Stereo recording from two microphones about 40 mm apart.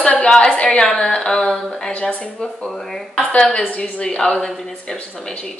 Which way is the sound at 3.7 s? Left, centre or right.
Left.